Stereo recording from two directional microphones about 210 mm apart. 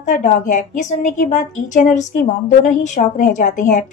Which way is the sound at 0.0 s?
35° left (ahead or behind).